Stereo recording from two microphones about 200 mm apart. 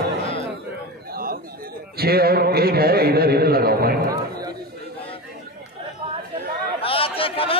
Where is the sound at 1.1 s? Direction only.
50° right (ahead or behind).